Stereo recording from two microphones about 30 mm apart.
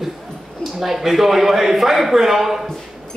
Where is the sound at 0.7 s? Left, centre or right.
Centre.